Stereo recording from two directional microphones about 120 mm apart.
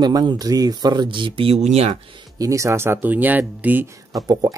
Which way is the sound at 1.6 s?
65° right (ahead or behind).